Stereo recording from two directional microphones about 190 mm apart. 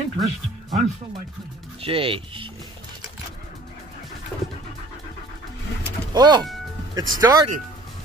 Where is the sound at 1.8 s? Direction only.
30° right (ahead or behind).